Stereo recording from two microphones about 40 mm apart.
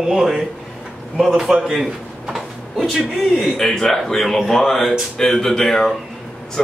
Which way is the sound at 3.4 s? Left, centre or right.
Centre.